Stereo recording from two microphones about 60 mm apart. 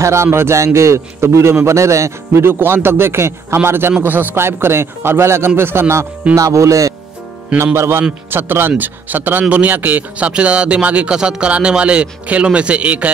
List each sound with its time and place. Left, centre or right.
0.0 s a man's voice: right
6.3 s speech: right
7.5 s a man's voice: right